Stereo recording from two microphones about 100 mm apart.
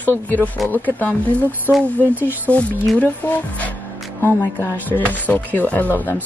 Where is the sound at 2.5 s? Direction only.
15° left (ahead or behind).